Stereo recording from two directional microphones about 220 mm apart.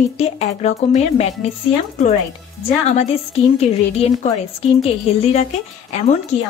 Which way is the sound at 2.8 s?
30° left (ahead or behind).